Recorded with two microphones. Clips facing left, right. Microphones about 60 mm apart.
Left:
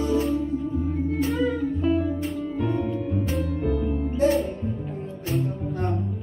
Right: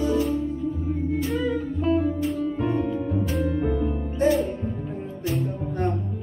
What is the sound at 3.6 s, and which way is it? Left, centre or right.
Music, centre.